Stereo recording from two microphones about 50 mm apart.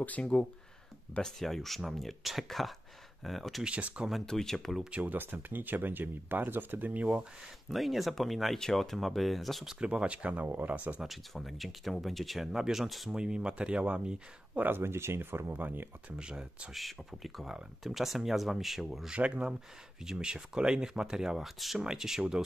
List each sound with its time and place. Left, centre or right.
0.2 s speech: centre
1.2 s speech: centre
3.6 s speech: right
4.3 s speech: centre
5.0 s speech: right
7.7 s speech: centre
9.7 s speech: right
11.1 s speech: centre
13.1 s speech: centre
14.8 s speech: right
16.2 s speech: centre
16.7 s speech: centre
19.0 s speech: right
20.0 s speech: centre